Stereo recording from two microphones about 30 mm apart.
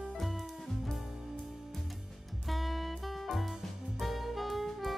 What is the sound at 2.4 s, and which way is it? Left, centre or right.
Music, centre.